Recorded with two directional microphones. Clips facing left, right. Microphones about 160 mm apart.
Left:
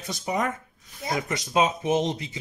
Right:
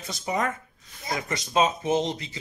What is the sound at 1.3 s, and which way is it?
Speech, 10° left (ahead or behind).